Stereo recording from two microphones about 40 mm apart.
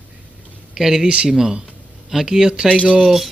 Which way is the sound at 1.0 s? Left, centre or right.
Right.